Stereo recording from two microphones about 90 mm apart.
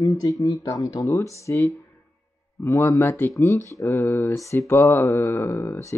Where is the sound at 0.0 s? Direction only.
40° left (ahead or behind).